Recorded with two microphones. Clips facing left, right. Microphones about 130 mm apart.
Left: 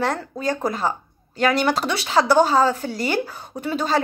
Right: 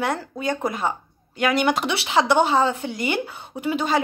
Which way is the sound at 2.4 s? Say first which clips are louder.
Left 2 dB; 25° right (ahead or behind).